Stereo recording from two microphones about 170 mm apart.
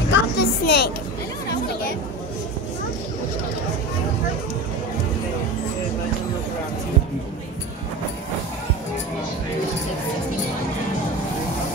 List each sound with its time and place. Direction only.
0.1 s music: 80° left